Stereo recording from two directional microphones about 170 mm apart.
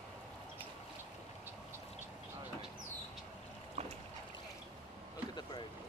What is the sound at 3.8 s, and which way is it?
Boat, 40° right (ahead or behind).